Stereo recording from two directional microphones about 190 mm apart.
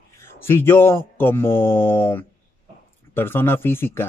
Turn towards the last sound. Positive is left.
turn(degrees=10)  # may be behind; listen again after turning